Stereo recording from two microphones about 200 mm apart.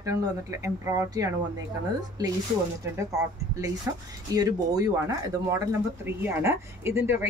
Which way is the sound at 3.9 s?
15° right (ahead or behind).